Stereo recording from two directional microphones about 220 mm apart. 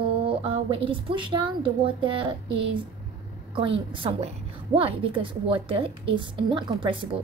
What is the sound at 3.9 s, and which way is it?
A woman's voice, 25° right (ahead or behind).